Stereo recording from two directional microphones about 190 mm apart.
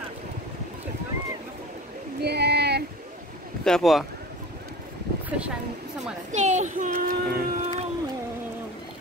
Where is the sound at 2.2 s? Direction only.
60° right (ahead or behind).